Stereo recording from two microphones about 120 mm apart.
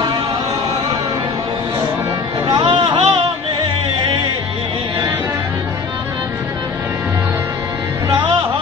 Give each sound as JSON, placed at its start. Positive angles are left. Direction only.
{"t": 2.6, "sound": "music", "side_deg": -45}